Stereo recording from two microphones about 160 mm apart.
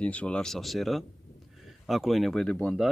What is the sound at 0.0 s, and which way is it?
Speech, 10° left (ahead or behind).